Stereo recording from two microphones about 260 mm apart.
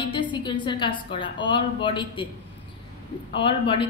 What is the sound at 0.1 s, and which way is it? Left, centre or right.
A woman's voice, centre.